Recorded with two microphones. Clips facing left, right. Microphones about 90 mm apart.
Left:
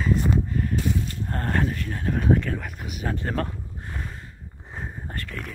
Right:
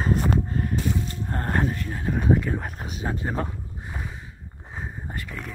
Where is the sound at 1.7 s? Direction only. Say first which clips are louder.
Even; 15° right (ahead or behind).